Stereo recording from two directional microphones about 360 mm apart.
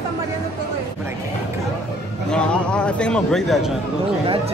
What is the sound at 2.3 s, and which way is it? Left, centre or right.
Speech, centre.